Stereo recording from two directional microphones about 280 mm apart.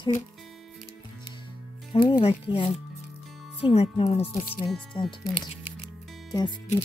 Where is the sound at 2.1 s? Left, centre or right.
Centre.